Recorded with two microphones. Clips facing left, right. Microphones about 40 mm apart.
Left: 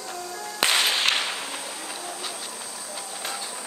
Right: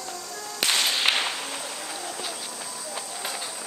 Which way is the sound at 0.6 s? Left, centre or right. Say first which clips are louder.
Left 2 dB; centre.